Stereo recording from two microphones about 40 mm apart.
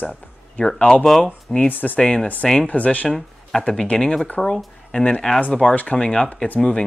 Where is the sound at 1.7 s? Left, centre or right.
Left.